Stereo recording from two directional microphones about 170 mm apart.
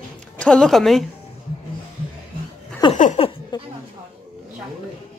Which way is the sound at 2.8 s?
30° left (ahead or behind).